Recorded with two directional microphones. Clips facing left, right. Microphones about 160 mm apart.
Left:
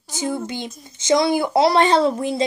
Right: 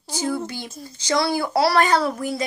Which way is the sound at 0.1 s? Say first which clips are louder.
Even; 20° left (ahead or behind).